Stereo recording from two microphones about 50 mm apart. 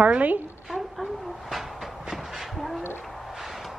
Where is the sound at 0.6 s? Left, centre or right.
Centre.